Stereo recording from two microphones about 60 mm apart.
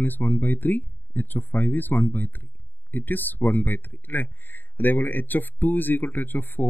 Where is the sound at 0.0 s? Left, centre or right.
Left.